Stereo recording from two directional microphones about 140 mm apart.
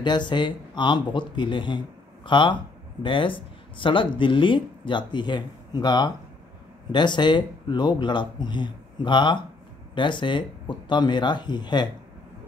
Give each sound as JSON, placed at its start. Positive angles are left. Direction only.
{"t": 0.0, "sound": "speech", "side_deg": 35}